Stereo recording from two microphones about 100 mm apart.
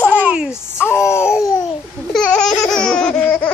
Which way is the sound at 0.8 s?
25° left (ahead or behind).